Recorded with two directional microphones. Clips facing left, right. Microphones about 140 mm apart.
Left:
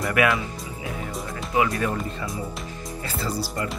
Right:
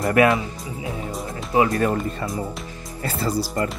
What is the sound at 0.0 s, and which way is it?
Speech, 30° right (ahead or behind).